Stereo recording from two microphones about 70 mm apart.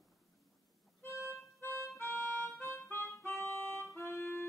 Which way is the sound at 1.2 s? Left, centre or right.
Left.